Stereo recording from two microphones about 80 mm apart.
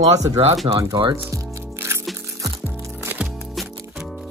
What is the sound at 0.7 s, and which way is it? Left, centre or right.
Speech, right.